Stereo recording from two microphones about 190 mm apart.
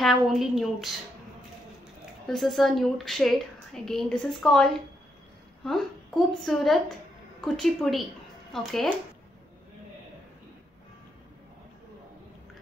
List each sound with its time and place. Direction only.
0.0 s a woman's voice: centre (ahead or behind)
2.2 s a woman's voice: centre (ahead or behind)